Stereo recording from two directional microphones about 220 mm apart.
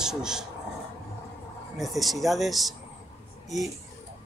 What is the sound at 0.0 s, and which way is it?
Speech, 5° right (ahead or behind).